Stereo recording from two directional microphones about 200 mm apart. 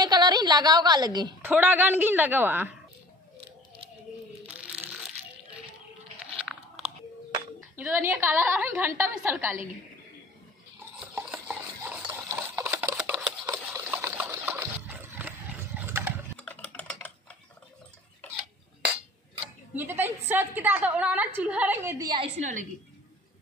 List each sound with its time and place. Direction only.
0.0 s a sound: 20° right (ahead or behind)
1.4 s a woman's voice: 10° right (ahead or behind)
7.7 s a woman's voice: 10° right (ahead or behind)
11.0 s a sound: 5° right (ahead or behind)
16.3 s typing: 5° left (ahead or behind)
19.7 s a woman's voice: 10° right (ahead or behind)
22.4 s a woman's voice: 40° right (ahead or behind)